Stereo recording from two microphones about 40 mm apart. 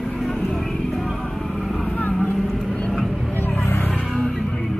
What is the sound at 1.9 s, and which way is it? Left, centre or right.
Vehicle, left.